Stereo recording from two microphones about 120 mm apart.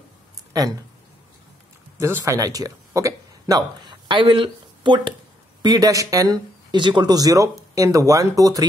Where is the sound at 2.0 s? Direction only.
20° right (ahead or behind).